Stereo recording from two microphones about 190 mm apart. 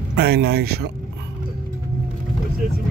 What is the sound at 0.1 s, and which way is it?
Speech, 60° right (ahead or behind).